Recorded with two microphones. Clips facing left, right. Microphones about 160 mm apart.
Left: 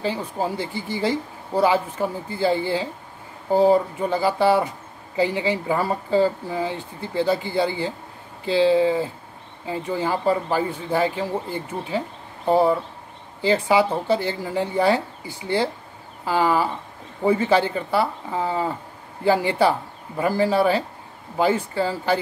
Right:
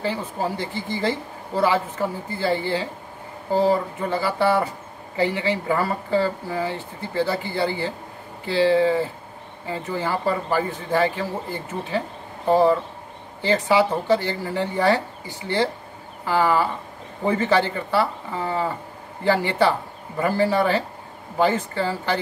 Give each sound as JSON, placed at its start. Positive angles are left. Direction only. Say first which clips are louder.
{"t": 0.0, "sound": "a woman's voice", "louder": "left 1 dB", "side_deg": 15}
{"t": 13.4, "sound": "a woman's voice", "louder": "left 1 dB", "side_deg": 10}